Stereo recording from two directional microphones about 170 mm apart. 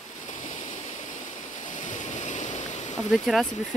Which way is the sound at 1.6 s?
50° left (ahead or behind).